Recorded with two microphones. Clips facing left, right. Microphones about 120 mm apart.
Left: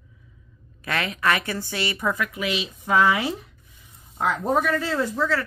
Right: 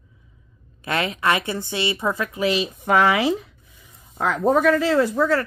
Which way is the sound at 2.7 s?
65° right (ahead or behind).